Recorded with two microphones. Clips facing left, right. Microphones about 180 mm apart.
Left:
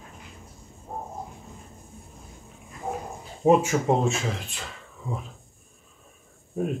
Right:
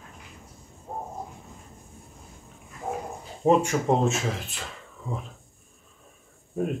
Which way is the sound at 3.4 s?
5° left (ahead or behind).